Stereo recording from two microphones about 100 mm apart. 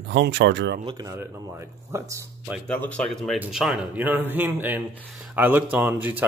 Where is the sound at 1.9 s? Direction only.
30° right (ahead or behind).